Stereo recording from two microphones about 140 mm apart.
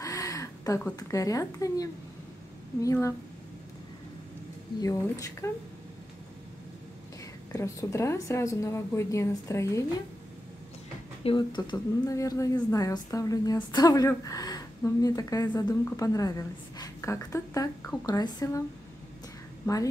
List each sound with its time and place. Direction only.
0.0 s a sound: 25° left (ahead or behind)
0.9 s a woman's voice: 25° left (ahead or behind)
4.8 s a woman's voice: 25° left (ahead or behind)
7.5 s a woman's voice: 20° left (ahead or behind)
11.2 s speech: 35° left (ahead or behind)
12.1 s a woman's voice: 25° left (ahead or behind)
19.6 s speech: 25° left (ahead or behind)